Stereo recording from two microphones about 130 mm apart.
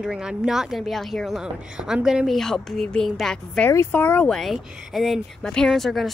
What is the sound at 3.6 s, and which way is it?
Speech, 15° left (ahead or behind).